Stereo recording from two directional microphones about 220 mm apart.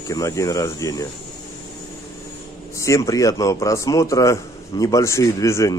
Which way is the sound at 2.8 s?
15° left (ahead or behind).